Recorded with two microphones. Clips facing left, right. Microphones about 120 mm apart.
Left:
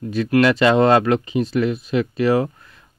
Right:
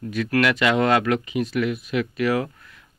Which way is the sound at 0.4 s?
35° left (ahead or behind).